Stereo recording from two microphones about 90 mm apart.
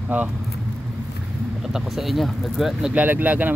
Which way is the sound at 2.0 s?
Centre (ahead or behind).